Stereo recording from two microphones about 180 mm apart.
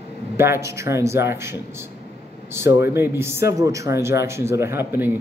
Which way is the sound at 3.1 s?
15° right (ahead or behind).